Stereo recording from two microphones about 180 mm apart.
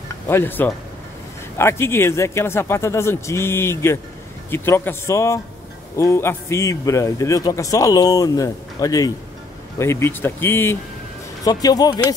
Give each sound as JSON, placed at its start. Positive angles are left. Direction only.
{"t": 0.3, "sound": "a man's voice", "side_deg": 10}